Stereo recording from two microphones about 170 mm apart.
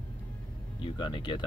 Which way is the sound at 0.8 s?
25° left (ahead or behind).